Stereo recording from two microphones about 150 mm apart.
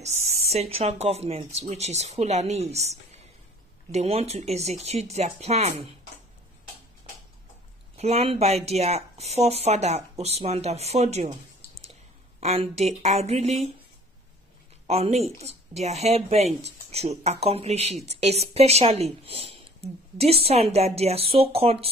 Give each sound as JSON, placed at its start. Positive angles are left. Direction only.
{"t": 0.0, "sound": "speech", "side_deg": -45}
{"t": 8.0, "sound": "speech", "side_deg": -45}
{"t": 12.4, "sound": "speech", "side_deg": -45}
{"t": 14.9, "sound": "speech", "side_deg": -45}